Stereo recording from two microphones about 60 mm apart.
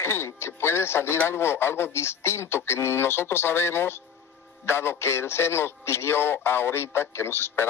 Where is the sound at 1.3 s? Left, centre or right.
Left.